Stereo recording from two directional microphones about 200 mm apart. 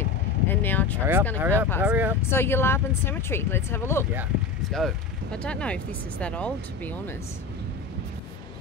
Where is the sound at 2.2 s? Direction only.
10° left (ahead or behind).